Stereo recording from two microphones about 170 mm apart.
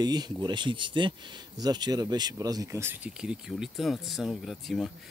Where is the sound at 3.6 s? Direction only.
Centre (ahead or behind).